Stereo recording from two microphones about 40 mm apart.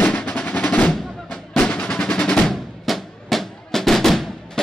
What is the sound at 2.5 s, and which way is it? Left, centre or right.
Drum, centre.